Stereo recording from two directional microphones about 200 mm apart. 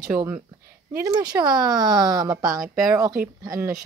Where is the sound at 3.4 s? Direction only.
20° right (ahead or behind).